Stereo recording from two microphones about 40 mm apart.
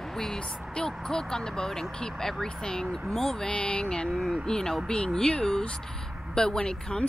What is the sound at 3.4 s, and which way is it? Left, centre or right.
A woman's voice, left.